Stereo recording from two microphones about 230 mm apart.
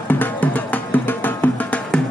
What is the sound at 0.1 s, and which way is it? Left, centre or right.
Music, centre.